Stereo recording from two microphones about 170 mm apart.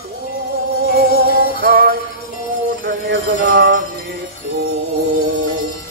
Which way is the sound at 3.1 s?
60° right (ahead or behind).